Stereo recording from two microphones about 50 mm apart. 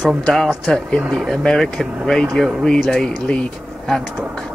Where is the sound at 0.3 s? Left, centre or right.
Centre.